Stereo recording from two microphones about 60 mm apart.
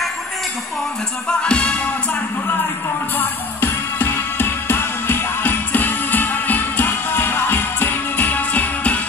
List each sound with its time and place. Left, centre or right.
1.4 s music: centre
3.2 s music: left